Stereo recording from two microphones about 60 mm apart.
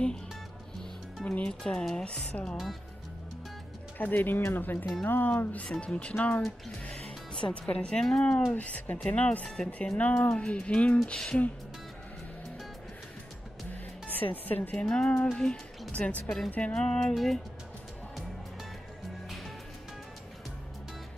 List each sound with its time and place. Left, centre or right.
1.2 s speech: left
1.6 s speech: centre
2.5 s speech: centre
4.0 s speech: left
5.7 s speech: centre
6.8 s music: centre
8.5 s speech: left
14.0 s a woman's voice: left
14.8 s speech: centre
16.7 s speech: centre
17.1 s speech: centre
19.2 s music: centre